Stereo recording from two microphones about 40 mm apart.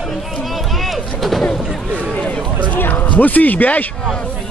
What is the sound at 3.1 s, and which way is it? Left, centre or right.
Speech, left.